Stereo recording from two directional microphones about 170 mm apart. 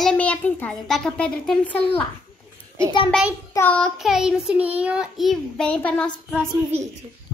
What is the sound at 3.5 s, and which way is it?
Child singing, 10° left (ahead or behind).